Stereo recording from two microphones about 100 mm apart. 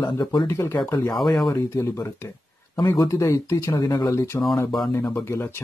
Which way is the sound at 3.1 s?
30° left (ahead or behind).